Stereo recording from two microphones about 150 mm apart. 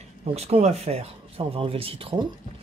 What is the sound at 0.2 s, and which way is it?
Speech, 40° right (ahead or behind).